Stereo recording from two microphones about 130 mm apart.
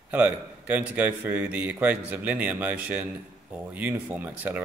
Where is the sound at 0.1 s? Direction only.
10° right (ahead or behind).